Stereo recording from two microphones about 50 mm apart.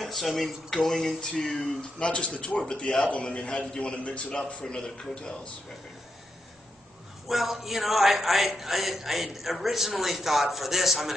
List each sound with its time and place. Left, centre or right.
0.0 s a man's voice: centre
7.2 s a man's voice: centre